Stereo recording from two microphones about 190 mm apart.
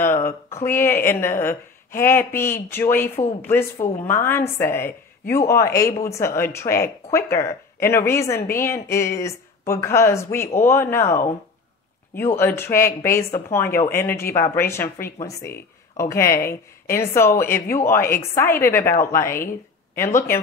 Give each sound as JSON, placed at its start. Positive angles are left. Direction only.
{"t": 0.0, "sound": "a woman's voice", "side_deg": 15}
{"t": 12.4, "sound": "a woman's voice", "side_deg": 10}